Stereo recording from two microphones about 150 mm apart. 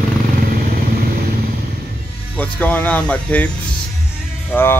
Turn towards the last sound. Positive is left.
turn(degrees=15)  # may be behind; listen again after turning